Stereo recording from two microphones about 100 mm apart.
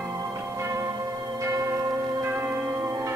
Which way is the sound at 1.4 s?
30° right (ahead or behind).